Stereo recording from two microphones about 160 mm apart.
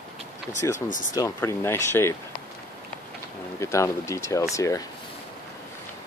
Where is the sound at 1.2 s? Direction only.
20° left (ahead or behind).